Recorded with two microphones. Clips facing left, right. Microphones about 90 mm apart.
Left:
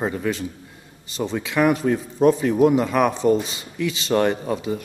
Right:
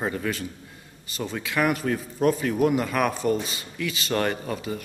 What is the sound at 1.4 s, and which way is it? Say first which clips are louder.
Speech: left 5 dB; centre (ahead or behind).